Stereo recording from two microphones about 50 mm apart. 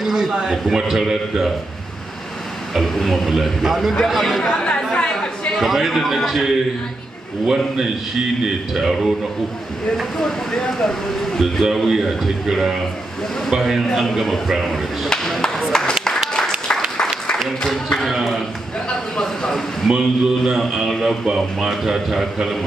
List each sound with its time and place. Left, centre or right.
0.0 s a man's voice: centre
2.7 s a man's voice: centre
4.9 s chatter: centre
5.6 s a man's voice: centre
7.4 s a man's voice: centre
9.9 s speech: centre
11.6 s a man's voice: centre
13.8 s a man's voice: centre
15.0 s a sound: centre
16.9 s applause: centre
17.9 s a sound: centre
19.1 s speech: centre
19.9 s a man's voice: centre